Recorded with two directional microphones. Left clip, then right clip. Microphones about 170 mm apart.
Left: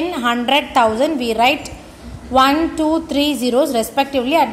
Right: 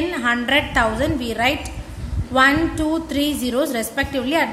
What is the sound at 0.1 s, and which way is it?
A woman's voice, 20° left (ahead or behind).